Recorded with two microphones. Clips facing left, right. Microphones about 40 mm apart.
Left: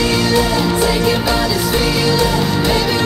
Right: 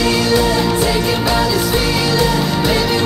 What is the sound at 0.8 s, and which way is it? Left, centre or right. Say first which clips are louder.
Music: left 1 dB; centre.